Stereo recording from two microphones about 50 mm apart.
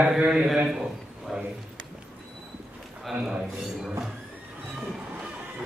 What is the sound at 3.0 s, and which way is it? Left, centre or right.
Speech, centre.